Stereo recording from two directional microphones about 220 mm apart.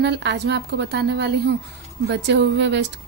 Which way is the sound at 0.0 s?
50° right (ahead or behind).